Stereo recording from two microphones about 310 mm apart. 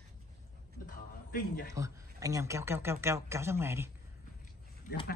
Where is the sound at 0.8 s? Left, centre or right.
Left.